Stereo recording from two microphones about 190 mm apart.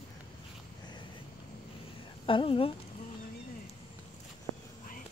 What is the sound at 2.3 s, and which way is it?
Speech, 30° left (ahead or behind).